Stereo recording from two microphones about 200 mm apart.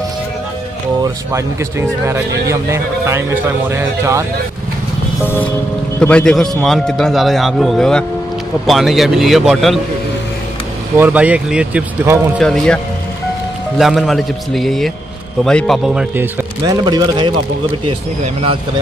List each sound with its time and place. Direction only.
1.0 s speech: 15° right (ahead or behind)
5.2 s music: 10° left (ahead or behind)
5.9 s a man's voice: 5° left (ahead or behind)
11.0 s speech: 5° right (ahead or behind)
12.4 s a man's voice: 5° left (ahead or behind)
16.6 s speech: 20° right (ahead or behind)